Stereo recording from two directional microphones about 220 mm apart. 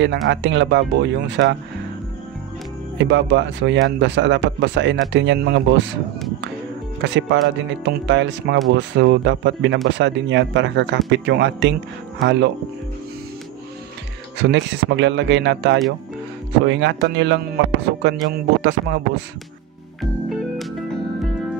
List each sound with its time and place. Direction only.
0.0 s speech: 55° right (ahead or behind)
3.0 s speech: 55° right (ahead or behind)
7.0 s speech: 55° right (ahead or behind)
14.4 s speech: 55° right (ahead or behind)
20.0 s music: centre (ahead or behind)